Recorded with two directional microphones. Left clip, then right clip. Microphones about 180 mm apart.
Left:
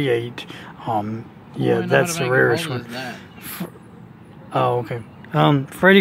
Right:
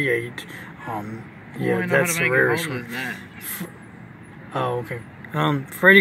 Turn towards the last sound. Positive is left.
turn(degrees=30)  # may be behind; listen again after turning